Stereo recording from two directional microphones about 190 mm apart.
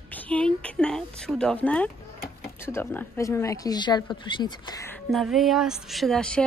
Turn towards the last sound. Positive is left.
turn(degrees=5)  # may be behind; listen again after turning